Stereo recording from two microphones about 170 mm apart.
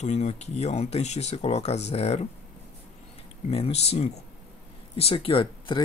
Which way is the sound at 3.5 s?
35° left (ahead or behind).